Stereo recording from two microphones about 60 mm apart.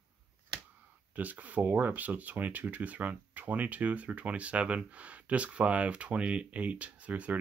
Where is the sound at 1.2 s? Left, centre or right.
Right.